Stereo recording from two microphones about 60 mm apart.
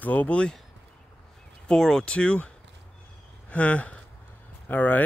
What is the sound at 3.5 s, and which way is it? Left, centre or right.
Speech, left.